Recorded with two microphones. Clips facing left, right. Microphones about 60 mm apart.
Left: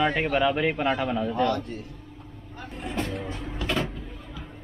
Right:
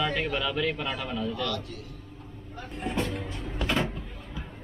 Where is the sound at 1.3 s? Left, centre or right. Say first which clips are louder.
Left 7 dB; left.